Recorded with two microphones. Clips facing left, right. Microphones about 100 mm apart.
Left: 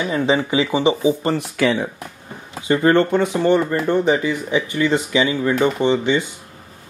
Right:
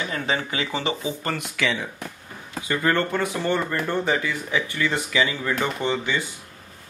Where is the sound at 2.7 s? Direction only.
25° left (ahead or behind).